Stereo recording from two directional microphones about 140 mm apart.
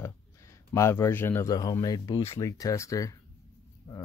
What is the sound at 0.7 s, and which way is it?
Speech, 20° left (ahead or behind).